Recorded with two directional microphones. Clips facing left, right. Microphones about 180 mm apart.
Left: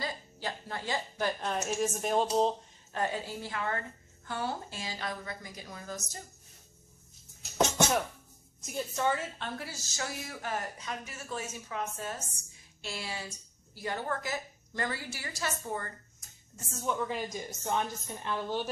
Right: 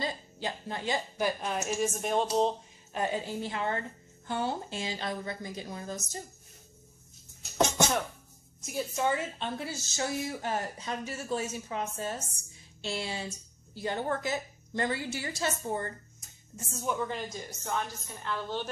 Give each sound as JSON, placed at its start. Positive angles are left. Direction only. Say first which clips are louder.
{"t": 0.0, "sound": "a woman's voice", "louder": "right 3 dB", "side_deg": -20}
{"t": 2.9, "sound": "a woman's voice", "louder": "right 2 dB", "side_deg": -20}
{"t": 8.5, "sound": "a woman's voice", "louder": "right 2 dB", "side_deg": 0}
{"t": 8.9, "sound": "a woman's voice", "louder": "right 1 dB", "side_deg": -15}
{"t": 16.8, "sound": "a woman's voice", "louder": "even", "side_deg": 0}
{"t": 17.5, "sound": "a woman's voice", "louder": "left 2 dB", "side_deg": 20}